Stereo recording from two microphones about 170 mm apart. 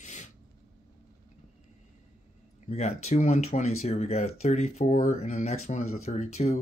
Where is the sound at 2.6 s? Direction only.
40° left (ahead or behind).